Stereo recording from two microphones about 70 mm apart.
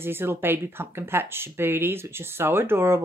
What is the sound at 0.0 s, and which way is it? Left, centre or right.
Speech, right.